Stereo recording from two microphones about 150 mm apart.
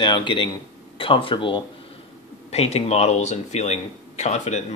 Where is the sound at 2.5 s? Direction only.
45° left (ahead or behind).